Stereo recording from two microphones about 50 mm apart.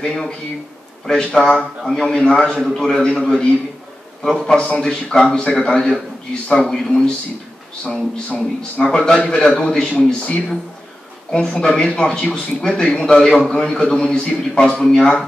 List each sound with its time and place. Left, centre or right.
0.0 s a man's voice: centre
4.5 s a man's voice: centre
7.8 s speech: left
8.9 s a man's voice: centre
11.6 s a man's voice: centre